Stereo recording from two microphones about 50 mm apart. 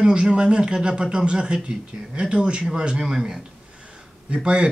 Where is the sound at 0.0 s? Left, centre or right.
Centre.